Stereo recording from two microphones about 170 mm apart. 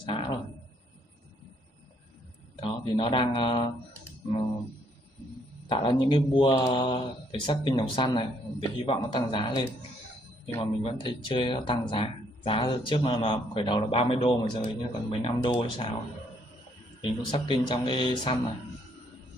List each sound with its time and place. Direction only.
0.1 s a sound: 30° left (ahead or behind)
2.6 s speech: 30° left (ahead or behind)
5.7 s speech: 30° left (ahead or behind)
17.0 s speech: 30° left (ahead or behind)